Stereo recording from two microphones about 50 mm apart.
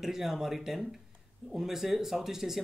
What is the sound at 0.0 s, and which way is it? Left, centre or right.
Speech, centre.